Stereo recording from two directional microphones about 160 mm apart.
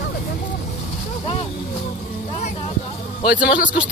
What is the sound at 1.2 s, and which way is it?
Speech, 35° left (ahead or behind).